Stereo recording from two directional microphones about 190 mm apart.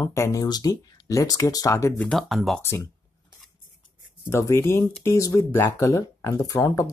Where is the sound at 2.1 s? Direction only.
Centre (ahead or behind).